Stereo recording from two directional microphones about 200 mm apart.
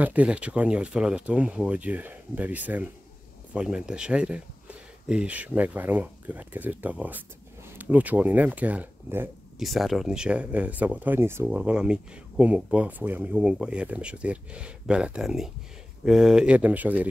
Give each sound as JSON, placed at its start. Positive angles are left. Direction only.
{"t": 0.0, "sound": "speech", "side_deg": -5}